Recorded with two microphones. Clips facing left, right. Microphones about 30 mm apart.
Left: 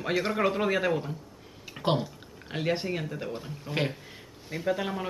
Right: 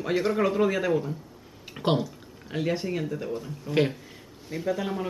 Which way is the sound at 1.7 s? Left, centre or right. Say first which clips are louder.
Right 2 dB; centre.